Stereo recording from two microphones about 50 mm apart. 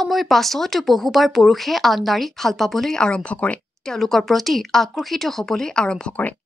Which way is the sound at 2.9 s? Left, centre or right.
Centre.